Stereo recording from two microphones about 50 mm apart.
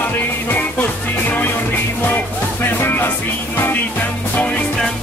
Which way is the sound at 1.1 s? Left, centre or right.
Left.